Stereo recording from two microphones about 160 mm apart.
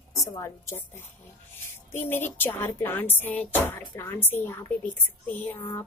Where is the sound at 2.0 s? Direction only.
10° left (ahead or behind).